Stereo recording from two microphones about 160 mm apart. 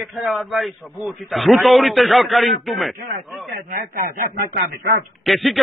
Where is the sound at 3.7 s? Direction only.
60° right (ahead or behind).